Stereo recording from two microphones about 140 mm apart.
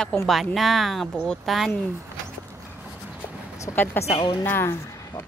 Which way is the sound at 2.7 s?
10° right (ahead or behind).